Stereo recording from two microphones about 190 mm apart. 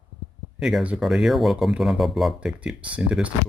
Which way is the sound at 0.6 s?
5° right (ahead or behind).